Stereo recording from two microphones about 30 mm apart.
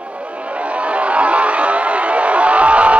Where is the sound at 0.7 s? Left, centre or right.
Right.